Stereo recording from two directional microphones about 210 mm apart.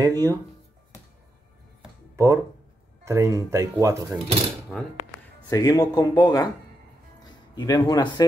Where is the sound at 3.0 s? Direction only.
15° right (ahead or behind).